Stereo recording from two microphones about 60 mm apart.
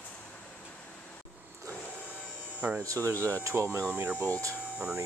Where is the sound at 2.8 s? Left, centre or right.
Right.